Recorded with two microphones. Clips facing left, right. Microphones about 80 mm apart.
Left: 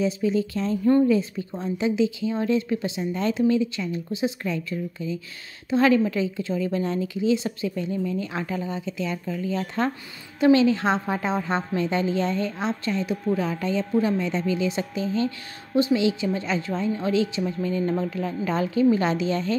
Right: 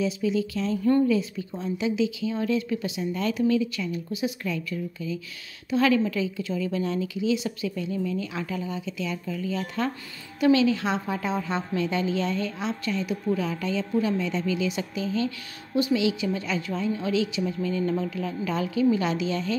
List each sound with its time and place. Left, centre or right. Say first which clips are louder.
0.0 s a woman's voice: left 2 dB; left